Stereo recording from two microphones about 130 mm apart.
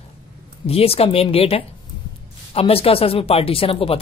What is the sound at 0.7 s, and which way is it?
Speech, 50° left (ahead or behind).